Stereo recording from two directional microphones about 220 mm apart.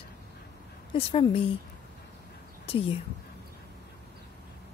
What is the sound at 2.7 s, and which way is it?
Speech, 25° left (ahead or behind).